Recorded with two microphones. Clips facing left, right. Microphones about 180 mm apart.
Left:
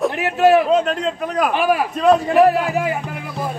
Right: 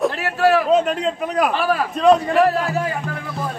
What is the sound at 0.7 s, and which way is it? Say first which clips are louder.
Speech: even; 5° right (ahead or behind).